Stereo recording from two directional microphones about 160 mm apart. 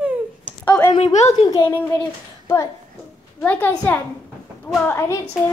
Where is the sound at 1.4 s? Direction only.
15° left (ahead or behind).